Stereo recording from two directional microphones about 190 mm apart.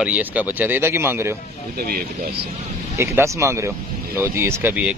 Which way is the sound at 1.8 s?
50° right (ahead or behind).